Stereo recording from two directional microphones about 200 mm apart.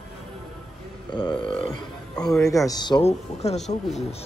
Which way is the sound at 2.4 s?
15° left (ahead or behind).